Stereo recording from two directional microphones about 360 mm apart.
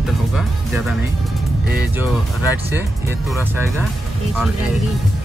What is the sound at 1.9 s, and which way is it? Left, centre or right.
Speech, centre.